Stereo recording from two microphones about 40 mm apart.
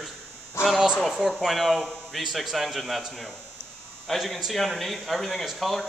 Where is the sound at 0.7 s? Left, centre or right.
Centre.